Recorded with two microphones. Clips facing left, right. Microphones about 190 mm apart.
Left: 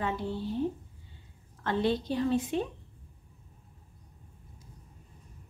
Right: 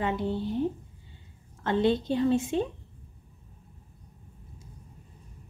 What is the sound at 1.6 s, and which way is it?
A woman's voice, 25° right (ahead or behind).